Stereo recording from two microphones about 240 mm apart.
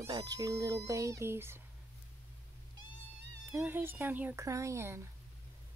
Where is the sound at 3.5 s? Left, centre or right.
Centre.